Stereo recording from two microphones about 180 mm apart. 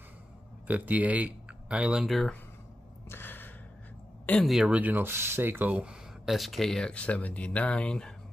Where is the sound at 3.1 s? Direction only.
10° left (ahead or behind).